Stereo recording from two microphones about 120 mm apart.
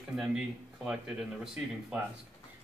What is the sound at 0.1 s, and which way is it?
Speech, 5° right (ahead or behind).